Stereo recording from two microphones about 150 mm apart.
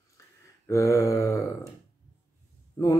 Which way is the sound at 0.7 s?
20° left (ahead or behind).